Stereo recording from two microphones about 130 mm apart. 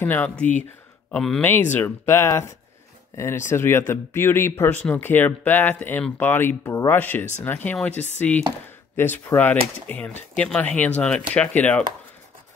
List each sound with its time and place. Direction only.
0.0 s speech: 15° left (ahead or behind)
1.4 s speech: 15° left (ahead or behind)